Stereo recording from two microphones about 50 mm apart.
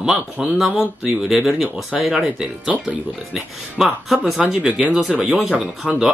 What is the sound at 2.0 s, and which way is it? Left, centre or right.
Speech, centre.